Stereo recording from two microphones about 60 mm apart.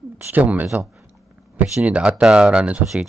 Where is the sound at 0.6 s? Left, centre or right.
Right.